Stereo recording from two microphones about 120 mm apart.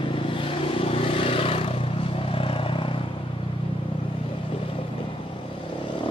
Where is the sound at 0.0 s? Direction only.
45° left (ahead or behind).